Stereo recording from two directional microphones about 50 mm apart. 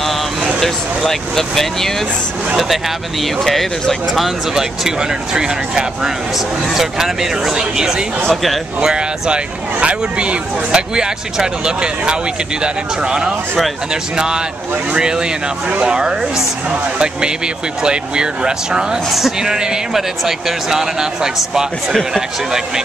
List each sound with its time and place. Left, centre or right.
0.6 s speech: centre
3.4 s speech: centre
4.1 s speech: centre
17.8 s speech: centre
19.0 s speech: centre